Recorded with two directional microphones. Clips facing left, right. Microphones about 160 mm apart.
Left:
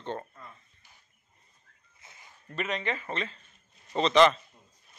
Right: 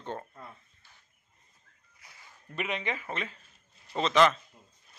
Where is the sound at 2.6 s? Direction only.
10° right (ahead or behind).